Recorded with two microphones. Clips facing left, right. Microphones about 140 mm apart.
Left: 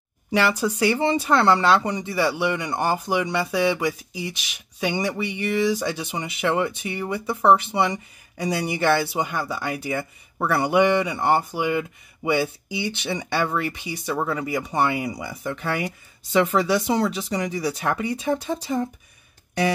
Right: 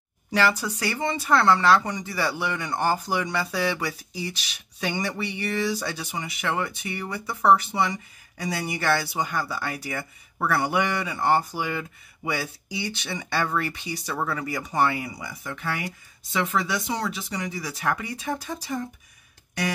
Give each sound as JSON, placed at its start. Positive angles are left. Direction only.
{"t": 0.3, "sound": "speech", "side_deg": 15}
{"t": 0.9, "sound": "speech", "side_deg": 30}
{"t": 2.1, "sound": "speech", "side_deg": 15}